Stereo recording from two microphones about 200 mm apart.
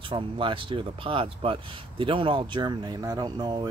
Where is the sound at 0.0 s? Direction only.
25° right (ahead or behind).